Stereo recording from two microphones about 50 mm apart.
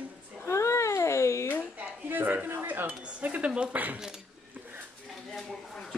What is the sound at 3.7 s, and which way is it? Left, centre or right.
Speech, right.